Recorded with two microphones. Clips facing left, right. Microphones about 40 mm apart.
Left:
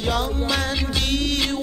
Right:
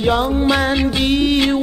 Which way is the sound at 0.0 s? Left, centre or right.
Right.